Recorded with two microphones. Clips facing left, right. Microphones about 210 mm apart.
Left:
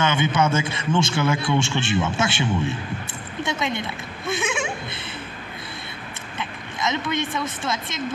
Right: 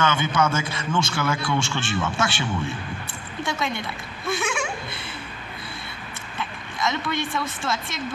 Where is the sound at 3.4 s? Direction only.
20° left (ahead or behind).